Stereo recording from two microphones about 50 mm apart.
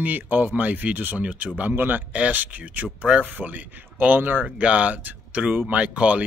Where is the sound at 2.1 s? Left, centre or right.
Right.